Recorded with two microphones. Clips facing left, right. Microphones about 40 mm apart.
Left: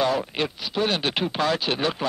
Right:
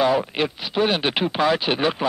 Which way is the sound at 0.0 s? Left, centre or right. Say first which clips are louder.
Right 4 dB; centre.